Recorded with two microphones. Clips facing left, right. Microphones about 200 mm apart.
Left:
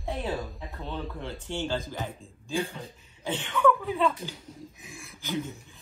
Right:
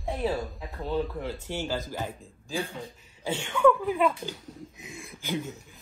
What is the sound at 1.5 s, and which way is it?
Speech, 10° right (ahead or behind).